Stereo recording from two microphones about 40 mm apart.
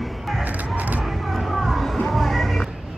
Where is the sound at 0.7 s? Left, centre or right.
Right.